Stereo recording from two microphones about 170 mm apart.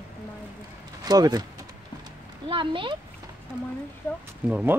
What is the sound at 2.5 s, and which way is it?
Speech, 30° right (ahead or behind).